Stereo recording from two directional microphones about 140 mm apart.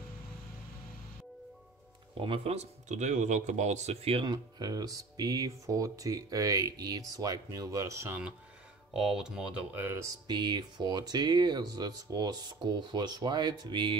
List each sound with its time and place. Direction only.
2.1 s speech: 40° right (ahead or behind); by 8.2 s 20° right (ahead or behind)
8.9 s speech: 5° right (ahead or behind)
10.2 s speech: 30° right (ahead or behind)